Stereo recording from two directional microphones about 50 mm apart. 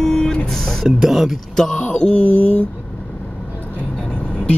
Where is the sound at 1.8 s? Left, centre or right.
Left.